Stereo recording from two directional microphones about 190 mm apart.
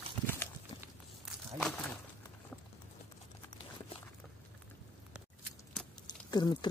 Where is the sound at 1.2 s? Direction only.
Centre (ahead or behind).